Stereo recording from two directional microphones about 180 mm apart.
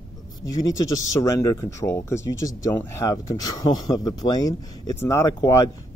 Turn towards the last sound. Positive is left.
turn(degrees=20)  # may be behind; listen again after turning